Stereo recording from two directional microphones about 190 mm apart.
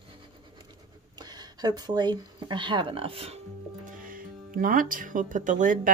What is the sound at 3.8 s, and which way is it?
Speech, 45° right (ahead or behind).